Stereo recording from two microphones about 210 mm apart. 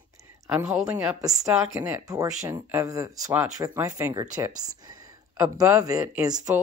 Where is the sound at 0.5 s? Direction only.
5° right (ahead or behind).